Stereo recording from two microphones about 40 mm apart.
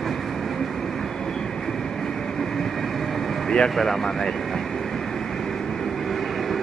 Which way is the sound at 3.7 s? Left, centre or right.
Centre.